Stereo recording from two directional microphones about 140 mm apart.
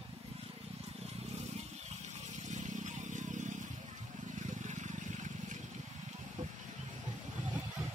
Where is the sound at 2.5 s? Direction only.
60° right (ahead or behind).